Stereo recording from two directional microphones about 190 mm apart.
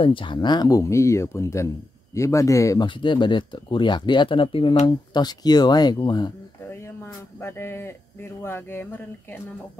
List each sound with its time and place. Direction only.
0.0 s speech: 25° left (ahead or behind)
7.3 s speech: 10° left (ahead or behind)